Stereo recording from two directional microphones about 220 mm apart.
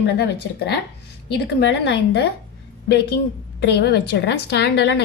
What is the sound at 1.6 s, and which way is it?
Speech, 55° left (ahead or behind).